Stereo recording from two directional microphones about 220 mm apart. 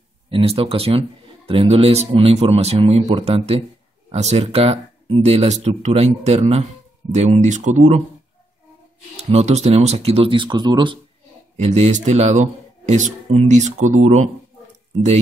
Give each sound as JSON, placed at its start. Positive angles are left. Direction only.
{"t": 0.3, "sound": "a man's voice", "side_deg": -25}
{"t": 9.1, "sound": "a man's voice", "side_deg": -30}
{"t": 11.5, "sound": "speech", "side_deg": -30}